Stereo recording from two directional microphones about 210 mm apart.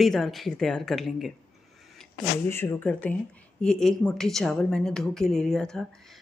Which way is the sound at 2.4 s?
10° left (ahead or behind).